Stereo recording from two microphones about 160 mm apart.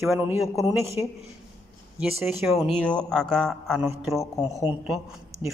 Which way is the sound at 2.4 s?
Centre (ahead or behind).